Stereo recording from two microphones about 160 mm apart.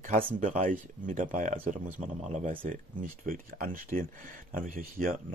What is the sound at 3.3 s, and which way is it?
Speech, 60° right (ahead or behind).